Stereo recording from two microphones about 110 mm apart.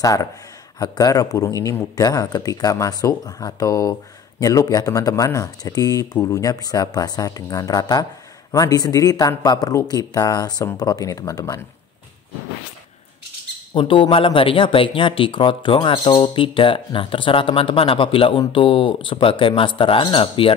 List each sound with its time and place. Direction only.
0.0 s speech: 35° left (ahead or behind)
13.7 s speech: 50° left (ahead or behind)